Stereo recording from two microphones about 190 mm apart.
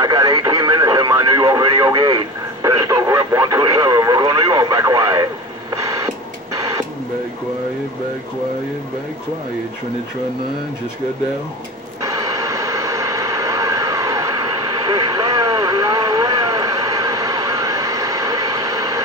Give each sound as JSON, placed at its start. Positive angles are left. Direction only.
{"t": 0.0, "sound": "radio", "side_deg": -20}
{"t": 12.0, "sound": "vehicle", "side_deg": -20}